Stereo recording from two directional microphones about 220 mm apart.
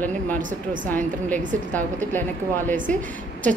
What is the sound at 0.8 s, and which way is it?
Speech, 10° left (ahead or behind).